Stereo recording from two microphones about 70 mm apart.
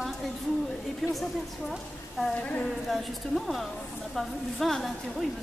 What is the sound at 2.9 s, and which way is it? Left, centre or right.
Speech, centre.